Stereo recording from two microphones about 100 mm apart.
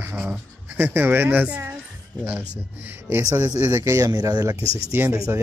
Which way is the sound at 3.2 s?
25° right (ahead or behind).